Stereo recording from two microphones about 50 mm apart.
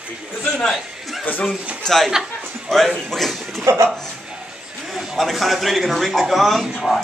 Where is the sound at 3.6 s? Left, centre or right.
Right.